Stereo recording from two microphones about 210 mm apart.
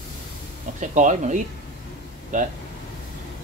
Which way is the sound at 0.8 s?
35° right (ahead or behind).